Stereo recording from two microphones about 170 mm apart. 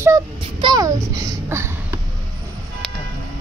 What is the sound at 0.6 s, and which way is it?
A child's voice, 25° right (ahead or behind).